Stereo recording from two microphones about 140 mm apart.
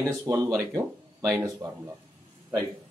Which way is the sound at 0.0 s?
20° right (ahead or behind).